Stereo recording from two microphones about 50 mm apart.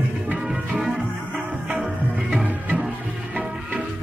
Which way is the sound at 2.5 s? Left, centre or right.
Right.